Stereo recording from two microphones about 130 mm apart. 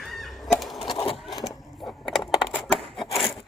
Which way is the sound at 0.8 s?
45° left (ahead or behind).